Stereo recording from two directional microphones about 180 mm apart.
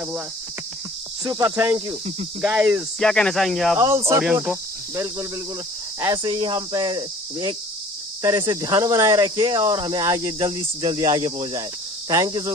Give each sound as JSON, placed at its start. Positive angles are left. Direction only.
{"t": 1.2, "sound": "cricket", "side_deg": -20}
{"t": 3.0, "sound": "speech", "side_deg": 5}
{"t": 3.7, "sound": "cricket", "side_deg": -15}
{"t": 5.9, "sound": "speech", "side_deg": -20}